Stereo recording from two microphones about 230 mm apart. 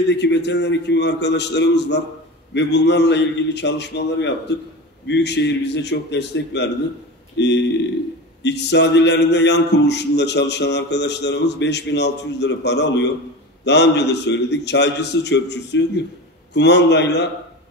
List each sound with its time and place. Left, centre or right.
0.1 s a man's voice: left